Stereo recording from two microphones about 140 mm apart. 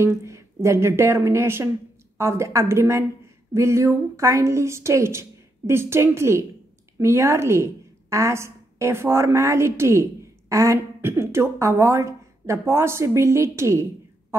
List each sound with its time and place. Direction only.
0.0 s a woman's voice: 20° right (ahead or behind)